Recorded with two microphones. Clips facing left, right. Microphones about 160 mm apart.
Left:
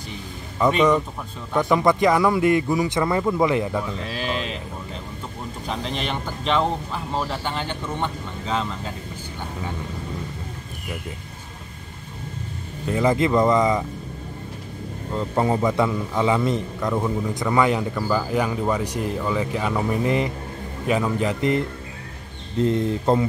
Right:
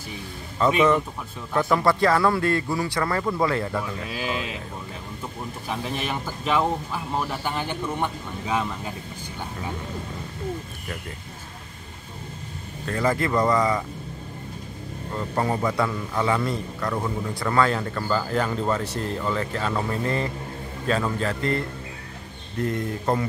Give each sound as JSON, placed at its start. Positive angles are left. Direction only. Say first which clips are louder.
{"t": 0.6, "sound": "speech", "louder": "left 2 dB", "side_deg": 15}
{"t": 1.5, "sound": "speech", "louder": "left 2 dB", "side_deg": 0}
{"t": 1.8, "sound": "speech", "louder": "left 2 dB", "side_deg": 15}
{"t": 4.1, "sound": "speech", "louder": "left 1 dB", "side_deg": -10}
{"t": 5.7, "sound": "speech", "louder": "left 1 dB", "side_deg": -10}
{"t": 12.8, "sound": "speech", "louder": "left 4 dB", "side_deg": 15}
{"t": 15.1, "sound": "a man's voice", "louder": "left 4 dB", "side_deg": 20}